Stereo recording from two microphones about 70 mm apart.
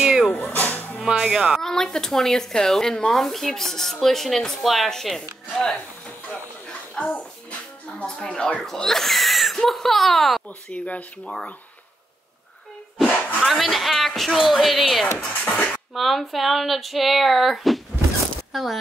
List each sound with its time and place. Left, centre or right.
0.0 s music: centre
0.3 s music: left
1.0 s speech: centre
1.6 s speech: centre
7.0 s a child's voice: centre
10.7 s speech: centre
11.2 s speech: centre
13.1 s a sound: left
13.4 s speech: centre
15.2 s beatboxing: left
15.9 s speech: centre